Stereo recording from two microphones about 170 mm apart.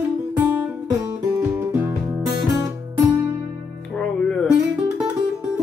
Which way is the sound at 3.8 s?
5° left (ahead or behind).